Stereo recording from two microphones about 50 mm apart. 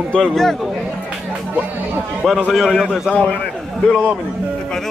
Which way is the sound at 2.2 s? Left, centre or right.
Centre.